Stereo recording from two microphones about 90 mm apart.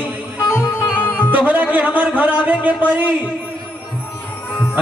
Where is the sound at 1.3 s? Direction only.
20° right (ahead or behind).